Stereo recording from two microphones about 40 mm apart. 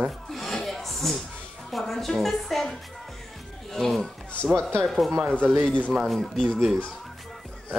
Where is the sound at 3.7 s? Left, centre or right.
Centre.